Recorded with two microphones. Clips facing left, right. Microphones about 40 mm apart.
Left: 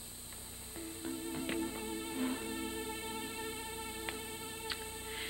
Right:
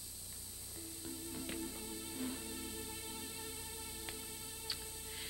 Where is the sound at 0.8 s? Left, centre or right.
Left.